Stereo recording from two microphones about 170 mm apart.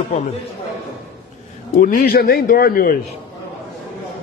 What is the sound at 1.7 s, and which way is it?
A man's voice, 55° left (ahead or behind).